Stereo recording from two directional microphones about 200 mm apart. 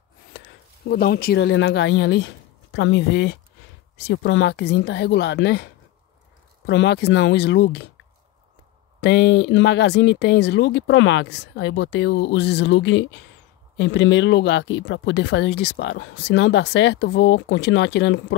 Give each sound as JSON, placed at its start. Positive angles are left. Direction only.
{"t": 0.8, "sound": "speech", "side_deg": 50}
{"t": 9.0, "sound": "speech", "side_deg": 60}